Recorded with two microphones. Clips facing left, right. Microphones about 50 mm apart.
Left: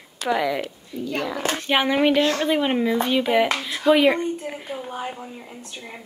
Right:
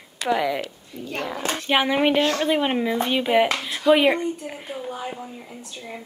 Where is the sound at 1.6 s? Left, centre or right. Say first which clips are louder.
Even; centre.